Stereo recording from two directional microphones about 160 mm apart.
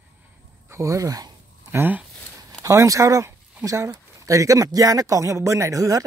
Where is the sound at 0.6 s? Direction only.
20° right (ahead or behind).